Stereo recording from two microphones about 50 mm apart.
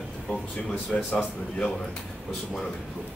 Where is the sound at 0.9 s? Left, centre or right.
Centre.